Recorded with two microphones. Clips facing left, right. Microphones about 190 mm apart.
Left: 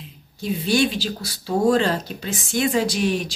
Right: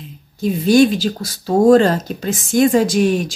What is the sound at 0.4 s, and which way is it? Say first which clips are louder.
Speech: right 8 dB; 45° right (ahead or behind).